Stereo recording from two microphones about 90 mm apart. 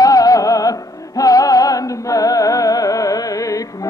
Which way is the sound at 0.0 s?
40° left (ahead or behind).